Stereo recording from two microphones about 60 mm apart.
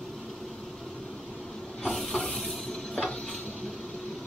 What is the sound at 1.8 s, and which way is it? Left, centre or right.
Hiss, centre.